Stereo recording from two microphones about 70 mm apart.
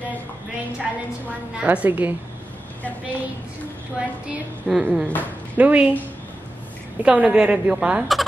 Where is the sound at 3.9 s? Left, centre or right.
Centre.